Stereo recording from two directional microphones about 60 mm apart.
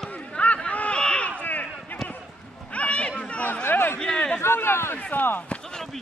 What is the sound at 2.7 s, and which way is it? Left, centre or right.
Chatter, left.